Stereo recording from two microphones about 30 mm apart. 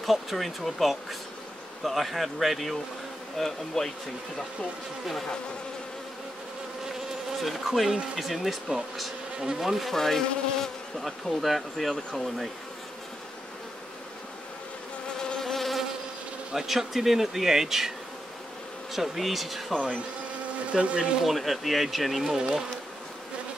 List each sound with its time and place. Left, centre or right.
0.0 s speech: centre
3.3 s insect: centre
7.3 s speech: centre
9.9 s insect: centre
11.1 s speech: centre
15.3 s insect: centre
16.5 s speech: centre
18.9 s speech: centre
19.7 s insect: left
20.8 s speech: right
21.2 s speech: centre